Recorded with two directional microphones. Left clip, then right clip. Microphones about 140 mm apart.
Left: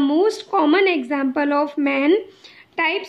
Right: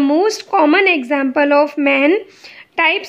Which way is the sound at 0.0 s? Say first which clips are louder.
Right 4 dB; 20° right (ahead or behind).